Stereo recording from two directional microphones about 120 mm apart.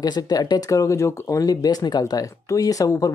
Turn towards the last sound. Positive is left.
turn(degrees=30)  # may be behind; listen again after turning